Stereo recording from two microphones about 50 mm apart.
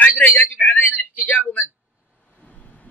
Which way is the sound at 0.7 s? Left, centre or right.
Left.